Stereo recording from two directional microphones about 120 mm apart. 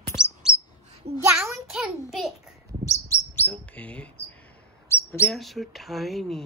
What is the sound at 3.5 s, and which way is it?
Speech, 10° left (ahead or behind).